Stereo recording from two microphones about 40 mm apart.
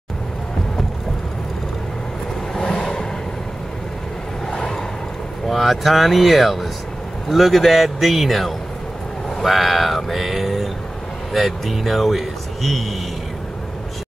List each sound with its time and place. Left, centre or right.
2.5 s vehicle: centre
4.6 s vehicle: centre
5.5 s speech: centre